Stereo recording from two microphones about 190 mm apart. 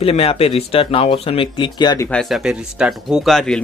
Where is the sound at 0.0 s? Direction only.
30° left (ahead or behind).